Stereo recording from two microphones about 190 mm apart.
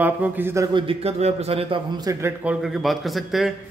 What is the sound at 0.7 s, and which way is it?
A man's voice, 30° right (ahead or behind).